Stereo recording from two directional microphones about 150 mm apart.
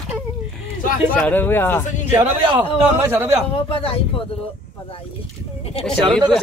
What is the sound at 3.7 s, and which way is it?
Speech, 35° left (ahead or behind).